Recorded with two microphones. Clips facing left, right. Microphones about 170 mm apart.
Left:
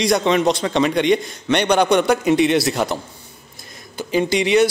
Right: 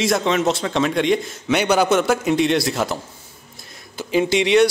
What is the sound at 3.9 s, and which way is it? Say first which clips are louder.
Speech: even; centre (ahead or behind).